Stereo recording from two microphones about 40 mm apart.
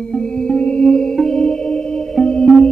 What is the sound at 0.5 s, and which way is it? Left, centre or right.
Music, left.